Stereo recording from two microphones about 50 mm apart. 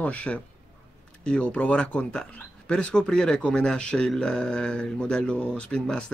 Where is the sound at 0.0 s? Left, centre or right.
Left.